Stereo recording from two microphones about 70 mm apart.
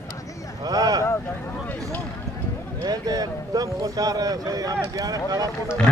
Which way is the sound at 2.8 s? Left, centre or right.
Right.